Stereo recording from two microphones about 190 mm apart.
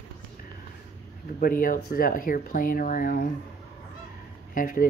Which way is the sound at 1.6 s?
45° left (ahead or behind).